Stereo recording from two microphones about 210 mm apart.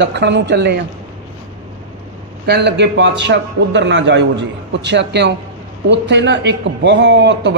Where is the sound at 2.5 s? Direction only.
55° right (ahead or behind).